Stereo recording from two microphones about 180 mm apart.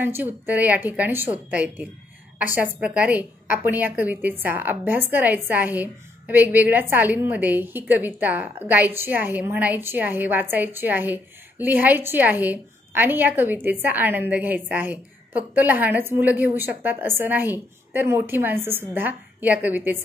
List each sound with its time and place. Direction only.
0.0 s a woman's voice: 10° right (ahead or behind)